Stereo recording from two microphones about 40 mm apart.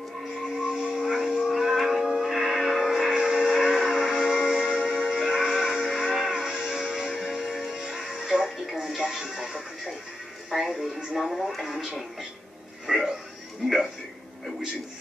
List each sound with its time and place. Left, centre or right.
0.6 s music: centre
3.1 s music: centre
3.3 s a sound: centre
4.4 s music: centre
11.1 s speech: centre
12.8 s a sound: centre